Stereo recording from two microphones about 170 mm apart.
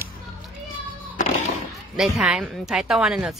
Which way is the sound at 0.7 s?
45° left (ahead or behind).